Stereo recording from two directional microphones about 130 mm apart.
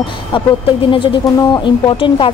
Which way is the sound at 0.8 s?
40° left (ahead or behind).